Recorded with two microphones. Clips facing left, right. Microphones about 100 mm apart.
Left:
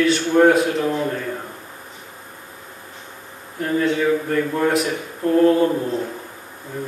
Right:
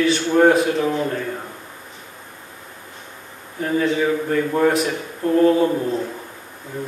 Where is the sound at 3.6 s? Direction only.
Centre (ahead or behind).